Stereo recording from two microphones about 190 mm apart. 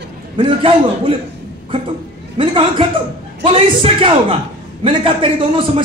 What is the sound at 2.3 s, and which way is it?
A man's voice, 25° right (ahead or behind).